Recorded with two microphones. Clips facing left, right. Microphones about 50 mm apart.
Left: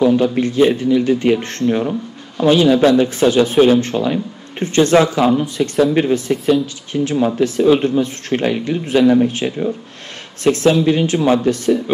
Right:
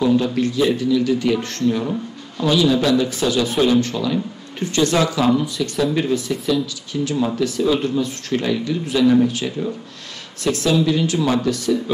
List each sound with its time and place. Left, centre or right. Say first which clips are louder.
0.0 s speech: left 4 dB; left